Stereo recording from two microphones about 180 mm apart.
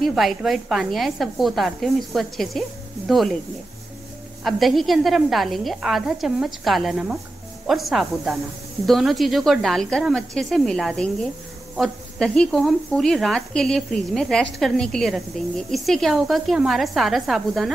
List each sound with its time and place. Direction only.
0.0 s speech: centre (ahead or behind)
4.5 s speech: centre (ahead or behind)